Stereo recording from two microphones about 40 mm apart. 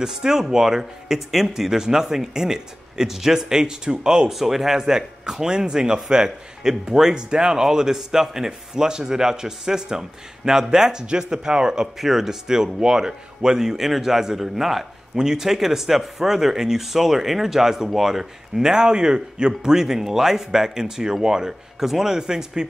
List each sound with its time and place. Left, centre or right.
0.0 s speech: centre
4.3 s speech: centre
15.1 s speech: centre